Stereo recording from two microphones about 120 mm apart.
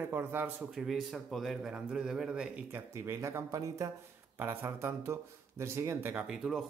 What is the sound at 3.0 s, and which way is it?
Speech, 25° right (ahead or behind).